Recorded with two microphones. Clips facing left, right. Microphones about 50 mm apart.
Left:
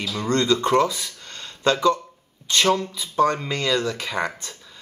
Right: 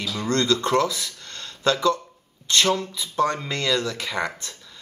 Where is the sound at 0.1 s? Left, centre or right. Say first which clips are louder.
Left 1 dB; left.